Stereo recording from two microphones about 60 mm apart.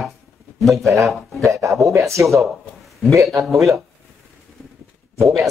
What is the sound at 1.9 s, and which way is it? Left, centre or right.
Speech, right.